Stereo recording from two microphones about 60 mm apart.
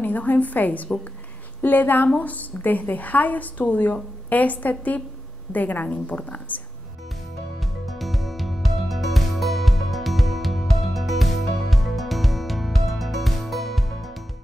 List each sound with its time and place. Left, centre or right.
0.0 s a woman's voice: left
7.6 s music: centre